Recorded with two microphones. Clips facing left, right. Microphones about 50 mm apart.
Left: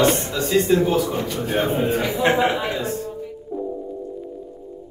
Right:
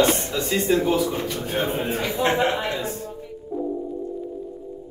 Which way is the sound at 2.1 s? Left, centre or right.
Left.